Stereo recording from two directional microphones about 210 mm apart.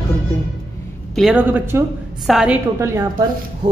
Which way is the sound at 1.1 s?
5° right (ahead or behind).